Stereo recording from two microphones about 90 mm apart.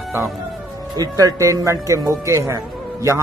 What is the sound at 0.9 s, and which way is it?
Speech, 40° right (ahead or behind).